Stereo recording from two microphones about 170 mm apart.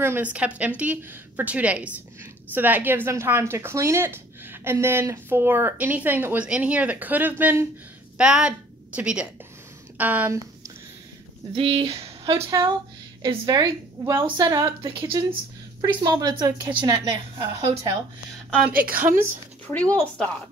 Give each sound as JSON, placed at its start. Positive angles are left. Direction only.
{"t": 0.0, "sound": "a woman's voice", "side_deg": -10}
{"t": 11.5, "sound": "a woman's voice", "side_deg": -35}
{"t": 18.7, "sound": "a woman's voice", "side_deg": -55}
{"t": 19.7, "sound": "speech", "side_deg": 10}